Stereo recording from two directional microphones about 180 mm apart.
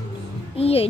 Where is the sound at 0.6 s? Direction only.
35° left (ahead or behind).